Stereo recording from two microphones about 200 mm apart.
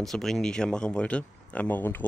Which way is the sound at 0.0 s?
Centre (ahead or behind).